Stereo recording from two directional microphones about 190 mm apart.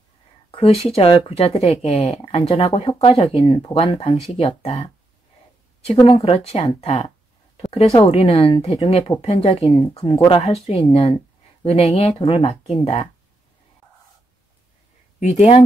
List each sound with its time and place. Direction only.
0.5 s speech: 30° left (ahead or behind)
5.9 s speech: 30° left (ahead or behind)
15.1 s speech: 35° left (ahead or behind)